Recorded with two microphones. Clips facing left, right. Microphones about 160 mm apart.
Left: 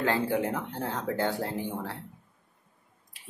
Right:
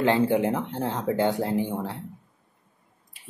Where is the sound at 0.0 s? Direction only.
20° right (ahead or behind).